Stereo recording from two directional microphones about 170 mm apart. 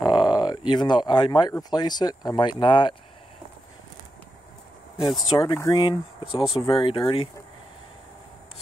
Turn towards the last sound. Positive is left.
turn(degrees=30)  # may be behind; listen again after turning